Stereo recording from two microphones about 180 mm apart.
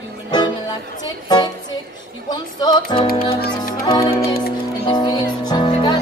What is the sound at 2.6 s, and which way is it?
Music, 25° left (ahead or behind).